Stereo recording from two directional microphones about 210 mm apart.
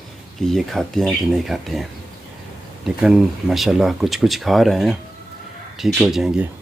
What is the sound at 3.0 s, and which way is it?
Speech, centre (ahead or behind).